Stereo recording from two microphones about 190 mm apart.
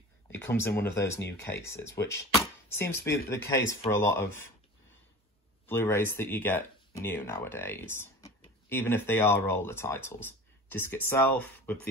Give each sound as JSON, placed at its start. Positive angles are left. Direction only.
{"t": 0.3, "sound": "speech", "side_deg": 10}
{"t": 5.7, "sound": "speech", "side_deg": 10}